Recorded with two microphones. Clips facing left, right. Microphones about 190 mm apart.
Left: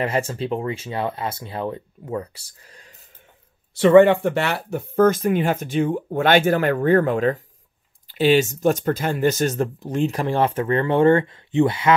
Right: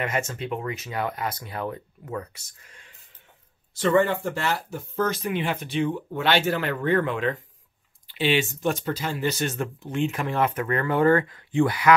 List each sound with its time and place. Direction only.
0.0 s speech: 30° left (ahead or behind)
3.7 s speech: 65° left (ahead or behind); by 11.9 s 25° left (ahead or behind)